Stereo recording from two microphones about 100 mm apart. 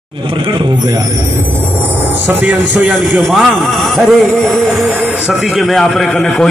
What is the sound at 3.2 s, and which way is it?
A man's voice, centre (ahead or behind).